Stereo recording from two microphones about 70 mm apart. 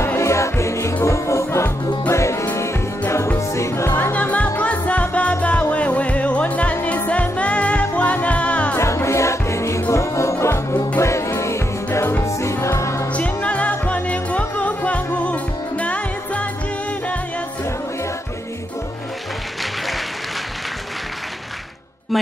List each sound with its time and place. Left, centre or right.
0.0 s music: left; by 8.7 s centre
8.7 s music: left
13.1 s music: centre
22.1 s music: centre